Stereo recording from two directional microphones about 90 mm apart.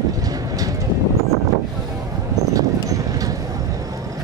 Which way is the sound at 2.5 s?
40° right (ahead or behind).